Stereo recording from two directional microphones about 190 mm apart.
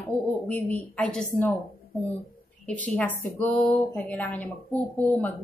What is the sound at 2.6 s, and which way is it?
A woman's voice, 5° left (ahead or behind).